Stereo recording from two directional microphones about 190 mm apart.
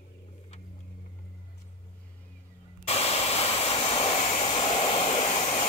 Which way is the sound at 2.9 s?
35° left (ahead or behind).